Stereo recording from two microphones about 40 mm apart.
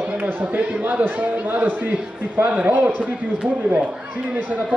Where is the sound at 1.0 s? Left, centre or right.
Right.